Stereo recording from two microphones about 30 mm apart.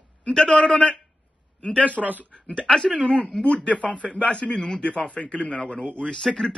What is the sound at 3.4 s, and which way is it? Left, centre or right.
A man's voice, left.